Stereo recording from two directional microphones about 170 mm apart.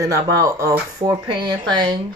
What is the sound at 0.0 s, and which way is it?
Speech, 20° right (ahead or behind).